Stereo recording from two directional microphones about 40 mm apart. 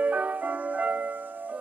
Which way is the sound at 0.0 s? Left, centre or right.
Right.